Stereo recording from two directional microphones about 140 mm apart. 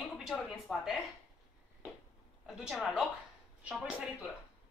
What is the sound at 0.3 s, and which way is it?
Speech, centre (ahead or behind).